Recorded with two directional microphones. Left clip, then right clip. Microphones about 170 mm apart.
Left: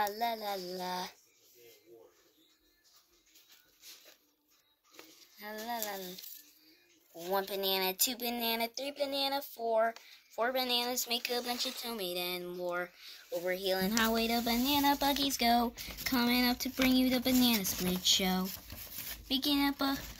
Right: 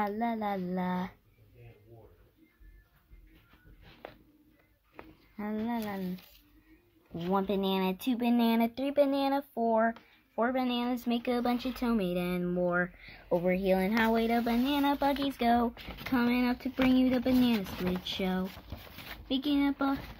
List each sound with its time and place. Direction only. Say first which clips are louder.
0.0 s speech: right 1 dB; 5° left (ahead or behind)
5.4 s speech: right 3 dB; 5° left (ahead or behind)
7.2 s speech: right 2 dB; 10° left (ahead or behind)
17.6 s speech: right 1 dB; 25° right (ahead or behind)
18.0 s speech: left 4 dB; 5° left (ahead or behind)